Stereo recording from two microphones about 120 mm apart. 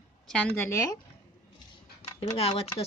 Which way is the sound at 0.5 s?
20° left (ahead or behind).